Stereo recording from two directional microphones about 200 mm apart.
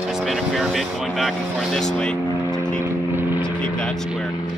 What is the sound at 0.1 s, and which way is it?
Speech, centre (ahead or behind).